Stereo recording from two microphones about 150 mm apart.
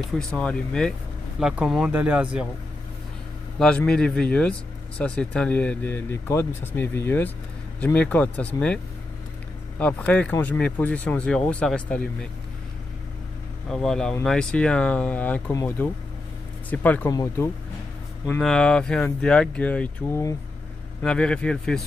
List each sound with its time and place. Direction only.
0.2 s speech: 5° left (ahead or behind)
1.4 s speech: 5° right (ahead or behind)
3.5 s speech: 5° left (ahead or behind)
9.8 s speech: 10° left (ahead or behind)
13.7 s speech: 5° left (ahead or behind)
17.1 s speech: 20° left (ahead or behind)
18.4 s speech: 5° left (ahead or behind)
21.0 s speech: 5° left (ahead or behind)